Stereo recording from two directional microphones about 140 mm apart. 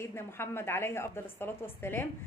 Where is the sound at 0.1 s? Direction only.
15° left (ahead or behind).